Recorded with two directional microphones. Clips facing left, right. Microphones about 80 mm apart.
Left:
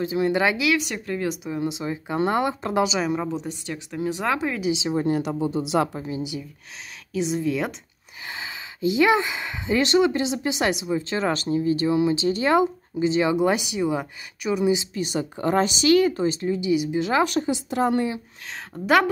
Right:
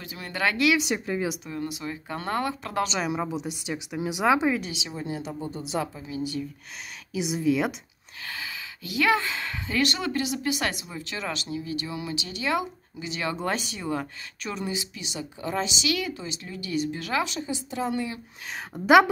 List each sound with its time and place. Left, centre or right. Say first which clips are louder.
0.0 s speech: left 8 dB; left
0.7 s speech: even; centre
1.4 s speech: left 5 dB; centre
2.8 s speech: left 4 dB; centre
3.1 s speech: left 3 dB; centre
4.9 s speech: left 10 dB; left
7.2 s speech: left 1 dB; centre
8.3 s speech: left 2 dB; left
13.3 s speech: left 8 dB; centre
15.0 s speech: left 9 dB; left
16.4 s speech: left 2 dB; centre
17.2 s speech: left 8 dB; left
17.5 s a woman's voice: left 7 dB; left
18.7 s speech: left 4 dB; centre